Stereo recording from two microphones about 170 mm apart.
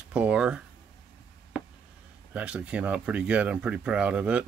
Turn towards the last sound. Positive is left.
turn(degrees=-5)  # may be behind; listen again after turning